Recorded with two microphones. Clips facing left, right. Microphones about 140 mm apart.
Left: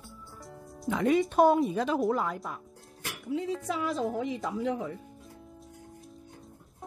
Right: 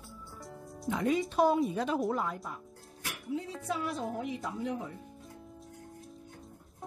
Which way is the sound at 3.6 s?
90° left.